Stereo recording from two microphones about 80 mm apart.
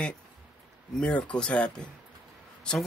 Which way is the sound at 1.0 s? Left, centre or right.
Centre.